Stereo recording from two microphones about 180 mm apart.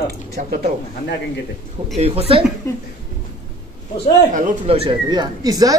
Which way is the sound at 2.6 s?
15° left (ahead or behind).